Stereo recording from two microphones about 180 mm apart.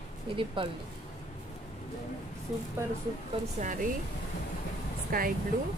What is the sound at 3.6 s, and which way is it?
Speech, 45° right (ahead or behind).